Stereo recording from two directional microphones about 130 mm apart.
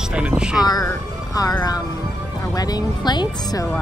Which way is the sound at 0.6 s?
30° left (ahead or behind).